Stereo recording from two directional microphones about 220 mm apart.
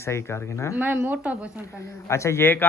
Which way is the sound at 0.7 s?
10° right (ahead or behind).